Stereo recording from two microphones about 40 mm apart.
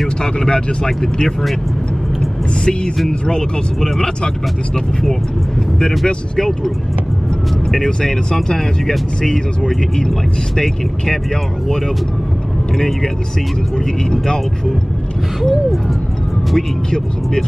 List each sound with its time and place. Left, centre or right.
0.2 s speech: centre
3.1 s speech: centre
5.8 s speech: centre
7.7 s speech: centre
12.7 s speech: centre
14.1 s speech: centre
16.5 s speech: centre